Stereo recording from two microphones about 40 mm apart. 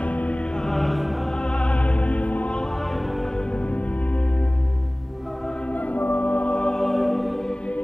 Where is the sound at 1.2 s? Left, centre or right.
Left.